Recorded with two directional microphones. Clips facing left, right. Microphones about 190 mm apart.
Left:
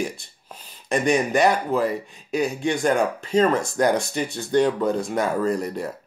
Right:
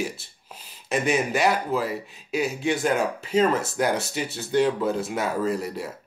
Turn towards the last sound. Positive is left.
turn(degrees=-5)  # may be behind; listen again after turning